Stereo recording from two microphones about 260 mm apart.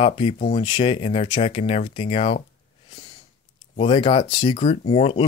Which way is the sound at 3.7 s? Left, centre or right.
Centre.